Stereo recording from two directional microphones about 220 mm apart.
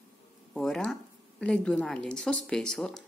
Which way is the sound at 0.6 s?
Centre (ahead or behind).